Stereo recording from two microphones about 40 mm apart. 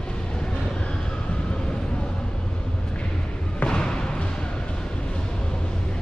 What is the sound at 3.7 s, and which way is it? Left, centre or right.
Basketball bounce, left.